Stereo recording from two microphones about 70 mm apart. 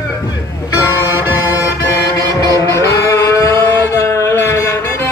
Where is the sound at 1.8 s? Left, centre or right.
Left.